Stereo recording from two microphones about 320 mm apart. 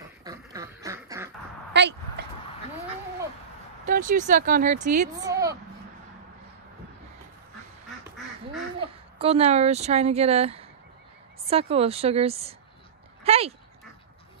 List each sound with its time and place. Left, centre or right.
0.2 s duck: centre
1.7 s a sound: right
3.8 s speech: right
5.2 s a sound: centre
8.7 s speech: centre
13.2 s dog: centre